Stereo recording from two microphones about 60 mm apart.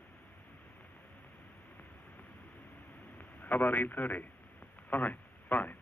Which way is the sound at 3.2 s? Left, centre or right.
Left.